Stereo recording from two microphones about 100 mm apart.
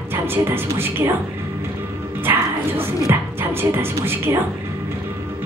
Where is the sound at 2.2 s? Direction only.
20° right (ahead or behind).